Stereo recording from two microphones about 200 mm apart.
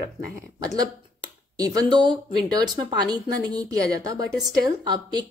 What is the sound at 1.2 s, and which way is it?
A woman's voice, 20° right (ahead or behind).